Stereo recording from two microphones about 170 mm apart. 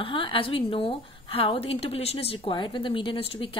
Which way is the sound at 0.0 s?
30° left (ahead or behind).